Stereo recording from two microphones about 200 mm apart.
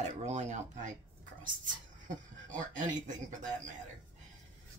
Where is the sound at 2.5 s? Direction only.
40° right (ahead or behind).